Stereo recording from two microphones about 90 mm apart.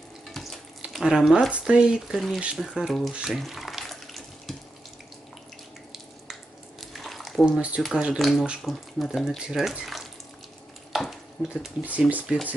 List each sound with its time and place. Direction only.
0.3 s water tap: centre (ahead or behind)
0.9 s speech: 5° right (ahead or behind)
3.2 s water tap: 5° right (ahead or behind)
6.8 s a sound: centre (ahead or behind)
7.5 s speech: 10° right (ahead or behind)
8.2 s speech: centre (ahead or behind)
10.9 s stir: centre (ahead or behind)
11.4 s speech: 10° right (ahead or behind)